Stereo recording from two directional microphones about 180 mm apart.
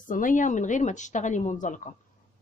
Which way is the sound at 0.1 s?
45° left (ahead or behind).